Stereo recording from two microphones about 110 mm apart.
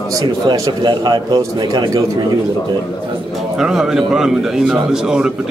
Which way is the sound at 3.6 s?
5° right (ahead or behind).